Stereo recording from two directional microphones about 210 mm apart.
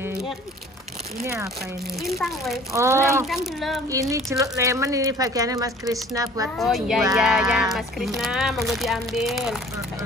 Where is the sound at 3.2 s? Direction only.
Centre (ahead or behind).